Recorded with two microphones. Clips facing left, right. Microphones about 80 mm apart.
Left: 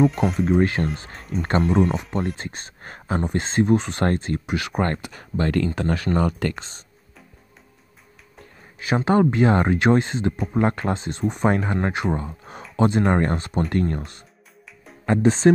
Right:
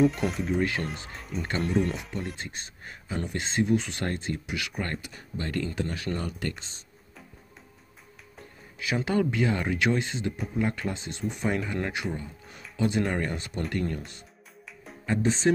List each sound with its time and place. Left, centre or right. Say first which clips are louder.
0.0 s speech: left 5 dB; centre
0.6 s speech: left 7 dB; left
1.6 s speech: left 6 dB; centre
2.3 s speech: left 5 dB; left
3.3 s speech: left 6 dB; left
8.7 s speech: left 7 dB; left
12.1 s speech: left 9 dB; left